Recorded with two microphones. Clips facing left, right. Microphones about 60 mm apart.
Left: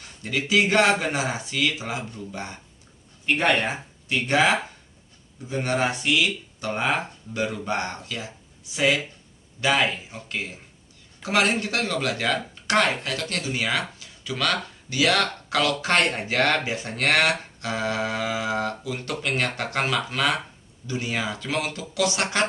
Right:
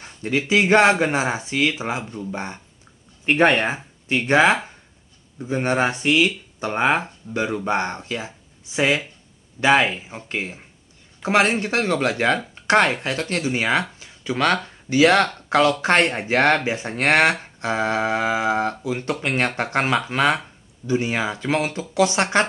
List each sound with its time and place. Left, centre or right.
0.0 s speech: right